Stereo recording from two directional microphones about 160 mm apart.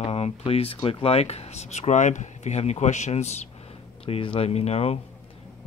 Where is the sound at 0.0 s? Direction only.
40° left (ahead or behind).